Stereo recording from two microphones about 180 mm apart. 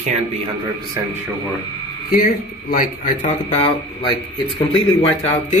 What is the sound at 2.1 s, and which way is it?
Speech, 50° left (ahead or behind).